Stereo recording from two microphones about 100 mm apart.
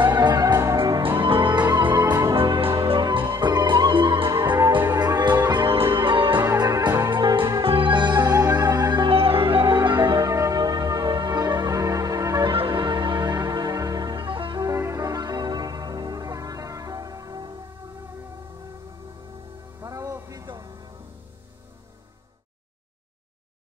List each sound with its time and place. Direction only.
0.0 s music: 45° right (ahead or behind)
1.0 s music: 60° right (ahead or behind)
2.3 s music: 60° right (ahead or behind)
4.3 s music: 40° right (ahead or behind); by 6.4 s 60° right (ahead or behind)
6.8 s music: 35° right (ahead or behind)
7.1 s music: 50° right (ahead or behind)
7.6 s music: 60° right (ahead or behind); by 9.1 s 45° right (ahead or behind)
9.1 s music: 70° right (ahead or behind); by 12.5 s 35° right (ahead or behind)
12.5 s music: 55° right (ahead or behind)
14.6 s music: 30° right (ahead or behind)
19.8 s music: 35° right (ahead or behind)